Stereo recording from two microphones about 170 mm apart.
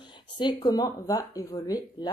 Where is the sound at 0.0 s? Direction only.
25° left (ahead or behind).